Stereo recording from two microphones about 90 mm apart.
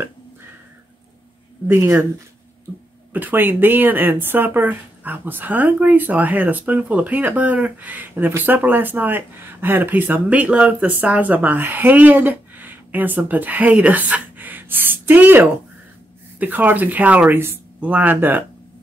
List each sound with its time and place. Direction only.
1.7 s speech: 30° right (ahead or behind)
3.1 s speech: 20° right (ahead or behind)